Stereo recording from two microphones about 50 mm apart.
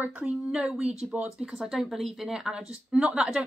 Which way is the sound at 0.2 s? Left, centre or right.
Centre.